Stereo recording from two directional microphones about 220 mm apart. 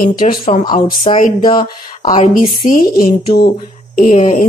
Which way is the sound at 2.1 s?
35° left (ahead or behind).